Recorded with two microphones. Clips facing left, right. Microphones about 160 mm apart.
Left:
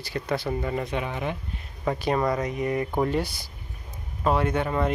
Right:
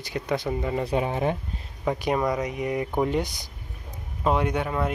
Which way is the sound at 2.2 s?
15° right (ahead or behind).